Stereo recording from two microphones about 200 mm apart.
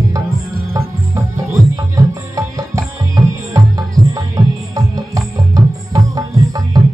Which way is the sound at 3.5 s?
15° right (ahead or behind).